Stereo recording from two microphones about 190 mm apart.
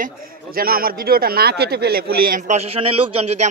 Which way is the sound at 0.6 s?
50° right (ahead or behind).